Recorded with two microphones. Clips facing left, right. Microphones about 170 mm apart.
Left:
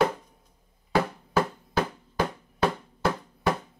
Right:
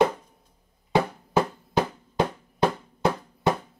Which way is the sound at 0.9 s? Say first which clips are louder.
Right 2 dB; 20° right (ahead or behind).